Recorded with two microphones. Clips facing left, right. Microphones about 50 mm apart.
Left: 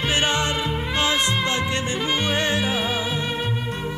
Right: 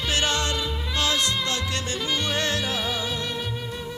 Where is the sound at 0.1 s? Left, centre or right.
Left.